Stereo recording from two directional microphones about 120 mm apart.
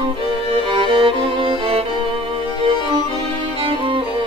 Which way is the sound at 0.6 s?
45° right (ahead or behind).